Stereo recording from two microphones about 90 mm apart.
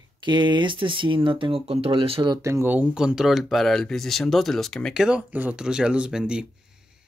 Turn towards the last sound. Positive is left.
turn(degrees=-10)  # may be behind; listen again after turning